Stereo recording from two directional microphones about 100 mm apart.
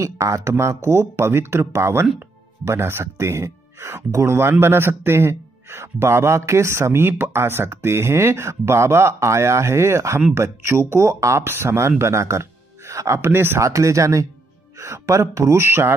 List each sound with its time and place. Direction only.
0.0 s speech: 30° right (ahead or behind)